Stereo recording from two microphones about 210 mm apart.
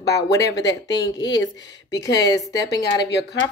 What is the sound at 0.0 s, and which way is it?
Speech, 15° left (ahead or behind).